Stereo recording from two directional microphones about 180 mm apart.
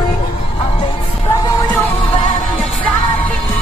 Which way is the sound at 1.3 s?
20° left (ahead or behind).